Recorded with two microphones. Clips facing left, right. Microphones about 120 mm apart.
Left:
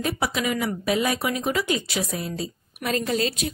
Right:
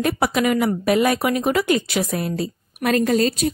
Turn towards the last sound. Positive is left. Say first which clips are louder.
# right 7 dB
turn(degrees=-45)  # may be behind; listen again after turning